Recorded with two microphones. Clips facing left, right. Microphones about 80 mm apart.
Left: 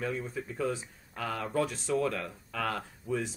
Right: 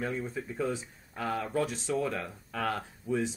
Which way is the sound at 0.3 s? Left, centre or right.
Centre.